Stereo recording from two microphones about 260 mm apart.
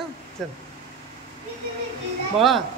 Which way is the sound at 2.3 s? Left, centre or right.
Centre.